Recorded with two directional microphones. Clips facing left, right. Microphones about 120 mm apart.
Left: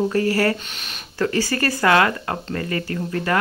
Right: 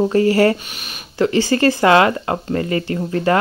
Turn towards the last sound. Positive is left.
turn(degrees=-25)  # may be behind; listen again after turning